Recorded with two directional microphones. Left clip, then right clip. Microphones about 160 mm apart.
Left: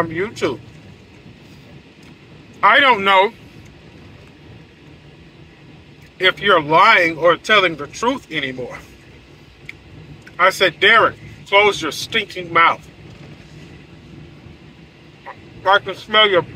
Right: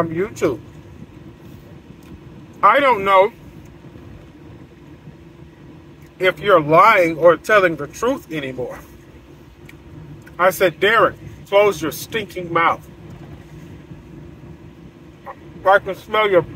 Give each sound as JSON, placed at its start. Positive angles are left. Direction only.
{"t": 0.2, "sound": "speech", "side_deg": -20}
{"t": 2.6, "sound": "speech", "side_deg": -10}
{"t": 6.1, "sound": "speech", "side_deg": -15}
{"t": 10.3, "sound": "speech", "side_deg": -15}
{"t": 15.2, "sound": "speech", "side_deg": -15}